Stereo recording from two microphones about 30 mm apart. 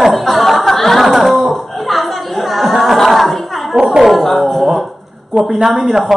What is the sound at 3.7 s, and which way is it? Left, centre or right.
Speech, right.